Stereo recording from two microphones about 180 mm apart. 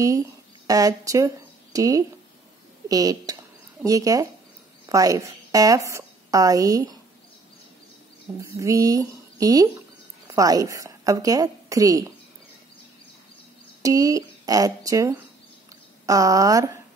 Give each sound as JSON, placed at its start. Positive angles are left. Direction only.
{"t": 0.7, "sound": "a woman's voice", "side_deg": -20}
{"t": 8.4, "sound": "a woman's voice", "side_deg": -15}
{"t": 13.8, "sound": "speech", "side_deg": -20}